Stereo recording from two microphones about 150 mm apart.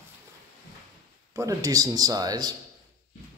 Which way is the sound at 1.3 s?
20° right (ahead or behind).